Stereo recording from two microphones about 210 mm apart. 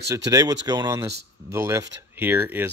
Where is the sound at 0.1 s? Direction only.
15° right (ahead or behind).